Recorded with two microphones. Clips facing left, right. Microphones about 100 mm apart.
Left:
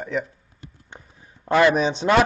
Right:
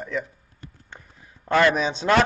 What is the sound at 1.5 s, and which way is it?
Speech, 15° left (ahead or behind).